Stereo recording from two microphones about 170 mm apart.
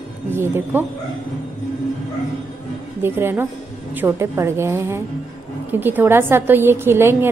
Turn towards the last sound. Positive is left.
turn(degrees=-15)  # may be behind; listen again after turning